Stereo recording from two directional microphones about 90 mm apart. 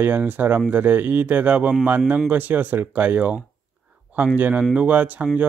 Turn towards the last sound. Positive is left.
turn(degrees=-15)  # may be behind; listen again after turning